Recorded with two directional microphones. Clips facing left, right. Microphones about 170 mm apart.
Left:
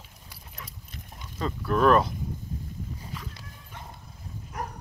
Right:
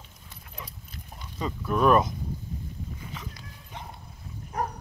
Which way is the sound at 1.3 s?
10° right (ahead or behind).